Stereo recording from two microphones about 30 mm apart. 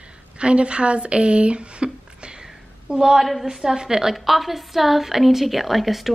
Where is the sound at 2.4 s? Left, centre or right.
Right.